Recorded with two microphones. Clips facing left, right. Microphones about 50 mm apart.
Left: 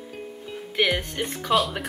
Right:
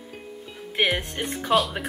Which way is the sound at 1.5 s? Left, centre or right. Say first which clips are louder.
Right 1 dB; centre.